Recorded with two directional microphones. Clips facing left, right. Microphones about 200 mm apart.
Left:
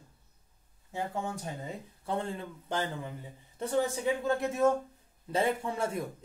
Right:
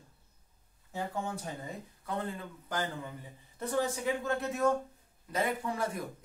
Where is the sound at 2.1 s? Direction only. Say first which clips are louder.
Left 3 dB; 25° left (ahead or behind).